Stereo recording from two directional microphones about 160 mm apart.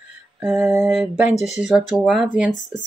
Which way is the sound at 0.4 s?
5° right (ahead or behind).